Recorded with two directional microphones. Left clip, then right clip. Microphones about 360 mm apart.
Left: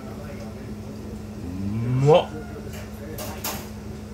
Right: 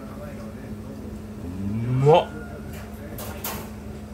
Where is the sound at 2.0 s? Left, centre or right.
Centre.